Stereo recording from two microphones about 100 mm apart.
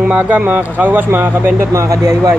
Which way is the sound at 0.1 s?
15° right (ahead or behind).